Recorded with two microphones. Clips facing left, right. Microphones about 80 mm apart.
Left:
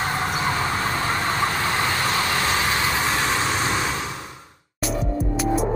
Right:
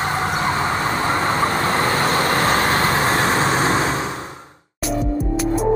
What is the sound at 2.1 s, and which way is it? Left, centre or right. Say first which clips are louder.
Vehicle: right 5 dB; right.